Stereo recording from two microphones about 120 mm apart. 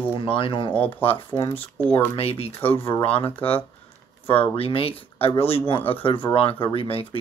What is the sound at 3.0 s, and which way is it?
Speech, 50° left (ahead or behind).